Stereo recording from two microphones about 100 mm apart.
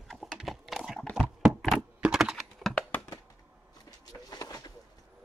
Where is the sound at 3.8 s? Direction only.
40° left (ahead or behind).